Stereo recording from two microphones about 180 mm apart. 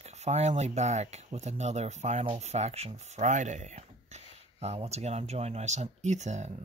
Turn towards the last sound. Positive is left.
turn(degrees=-40)  # may be behind; listen again after turning